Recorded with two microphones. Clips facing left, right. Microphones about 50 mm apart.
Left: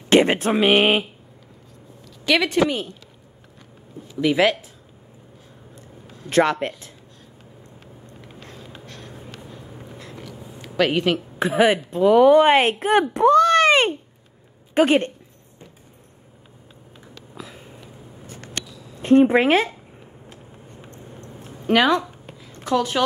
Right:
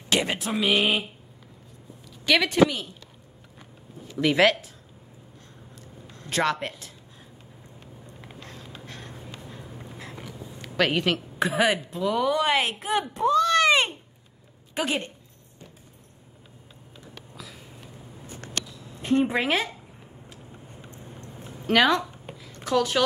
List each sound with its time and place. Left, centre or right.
0.1 s a woman's voice: left
2.2 s speech: centre
4.1 s speech: centre
6.3 s speech: left
8.3 s a sound: centre
10.6 s speech: centre
11.6 s a woman's voice: left
13.1 s a sound: left
14.7 s a woman's voice: left
17.4 s a sound: left
19.0 s a woman's voice: left
21.6 s speech: centre
22.5 s a sound: left
22.8 s speech: centre